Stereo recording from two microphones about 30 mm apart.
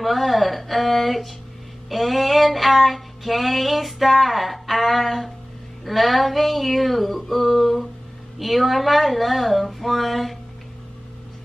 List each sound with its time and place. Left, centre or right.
0.0 s speech: centre
1.9 s female singing: centre